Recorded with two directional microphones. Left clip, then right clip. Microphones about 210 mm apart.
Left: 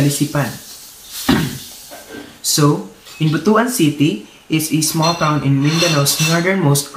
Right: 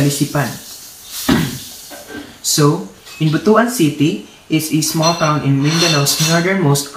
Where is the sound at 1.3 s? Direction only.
20° left (ahead or behind).